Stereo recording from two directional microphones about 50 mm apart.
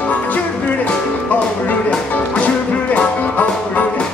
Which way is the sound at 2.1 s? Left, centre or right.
Left.